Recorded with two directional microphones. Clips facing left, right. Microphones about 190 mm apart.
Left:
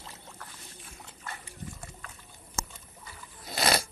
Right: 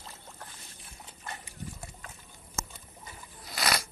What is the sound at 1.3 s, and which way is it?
Pig, 20° right (ahead or behind).